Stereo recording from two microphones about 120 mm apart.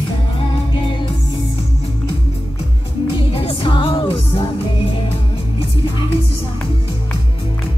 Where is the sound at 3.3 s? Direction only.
50° left (ahead or behind).